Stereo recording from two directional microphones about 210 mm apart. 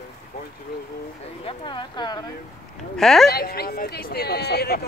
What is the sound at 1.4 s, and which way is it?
Speech, 20° left (ahead or behind).